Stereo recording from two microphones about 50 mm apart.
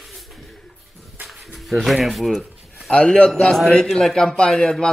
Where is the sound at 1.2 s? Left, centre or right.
Centre.